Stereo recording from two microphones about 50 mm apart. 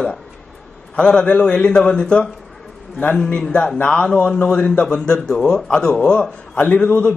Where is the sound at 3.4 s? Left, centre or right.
Centre.